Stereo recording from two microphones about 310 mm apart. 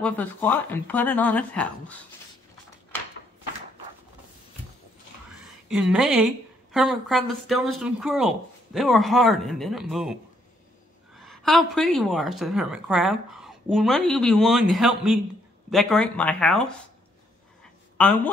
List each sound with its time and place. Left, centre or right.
0.0 s a woman's voice: centre
5.7 s a woman's voice: centre
11.1 s a woman's voice: centre
17.9 s speech: centre